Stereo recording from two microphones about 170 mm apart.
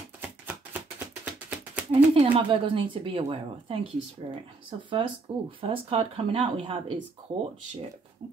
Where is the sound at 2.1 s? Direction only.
35° right (ahead or behind).